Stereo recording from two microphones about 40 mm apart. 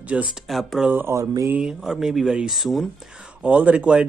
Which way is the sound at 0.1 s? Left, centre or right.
Right.